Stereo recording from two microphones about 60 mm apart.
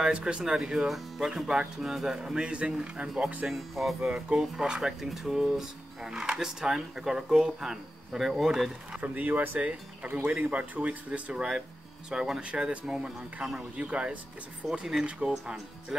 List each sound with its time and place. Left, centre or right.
0.0 s speech: centre
3.4 s speech: centre
4.1 s speech: centre
8.9 s speech: right
15.9 s music: centre